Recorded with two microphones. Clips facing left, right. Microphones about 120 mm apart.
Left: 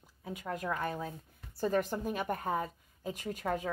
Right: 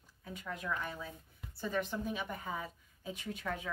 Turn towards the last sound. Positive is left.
turn(degrees=40)  # may be behind; listen again after turning